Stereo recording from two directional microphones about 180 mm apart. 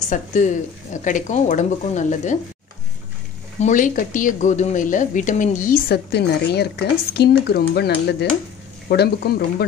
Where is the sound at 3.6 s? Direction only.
45° left (ahead or behind).